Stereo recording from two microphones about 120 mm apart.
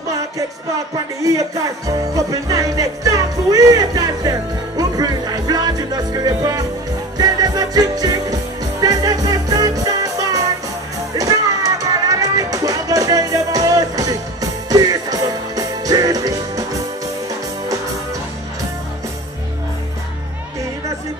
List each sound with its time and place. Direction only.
1.9 s music: 30° right (ahead or behind)